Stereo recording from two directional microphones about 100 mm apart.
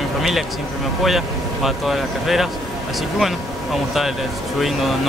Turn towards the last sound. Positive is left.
turn(degrees=0)  # may be behind; listen again after turning